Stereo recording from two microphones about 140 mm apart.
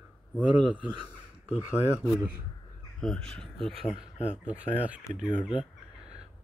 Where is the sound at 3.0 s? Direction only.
5° left (ahead or behind).